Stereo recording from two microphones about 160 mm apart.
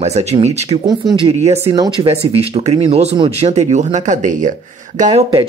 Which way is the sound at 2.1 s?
40° right (ahead or behind).